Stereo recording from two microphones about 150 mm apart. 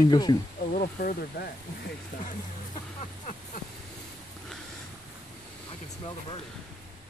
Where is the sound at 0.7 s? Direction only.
70° left (ahead or behind).